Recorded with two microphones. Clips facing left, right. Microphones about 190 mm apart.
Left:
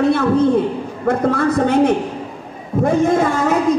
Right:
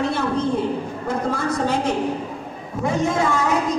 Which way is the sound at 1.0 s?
60° left (ahead or behind).